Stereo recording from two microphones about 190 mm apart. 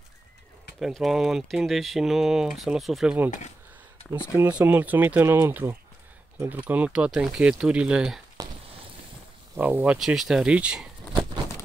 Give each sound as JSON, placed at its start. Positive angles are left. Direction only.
{"t": 0.7, "sound": "speech", "side_deg": 0}
{"t": 4.4, "sound": "speech", "side_deg": -10}
{"t": 8.4, "sound": "a sound", "side_deg": -20}
{"t": 9.6, "sound": "speech", "side_deg": -10}